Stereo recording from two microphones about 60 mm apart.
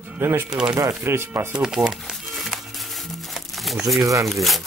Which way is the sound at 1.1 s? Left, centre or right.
Right.